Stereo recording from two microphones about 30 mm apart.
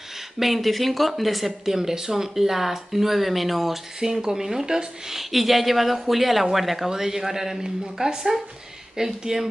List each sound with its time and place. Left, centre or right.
0.4 s speech: centre
1.8 s speech: centre
4.0 s speech: centre
5.3 s speech: centre
6.9 s speech: centre
7.6 s speech: right